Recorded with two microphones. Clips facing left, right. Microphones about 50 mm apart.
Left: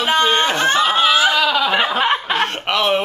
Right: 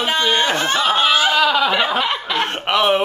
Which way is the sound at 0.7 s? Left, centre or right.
Centre.